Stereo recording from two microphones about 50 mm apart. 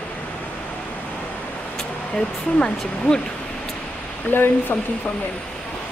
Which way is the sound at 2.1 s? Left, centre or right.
Centre.